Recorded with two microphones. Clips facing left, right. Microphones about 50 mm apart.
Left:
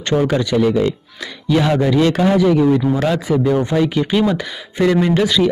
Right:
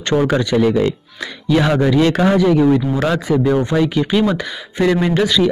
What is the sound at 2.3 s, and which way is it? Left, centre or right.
Speech, centre.